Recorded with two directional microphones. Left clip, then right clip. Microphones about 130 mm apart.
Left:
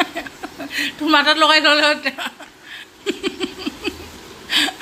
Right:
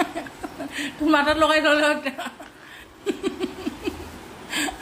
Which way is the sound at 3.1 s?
15° left (ahead or behind).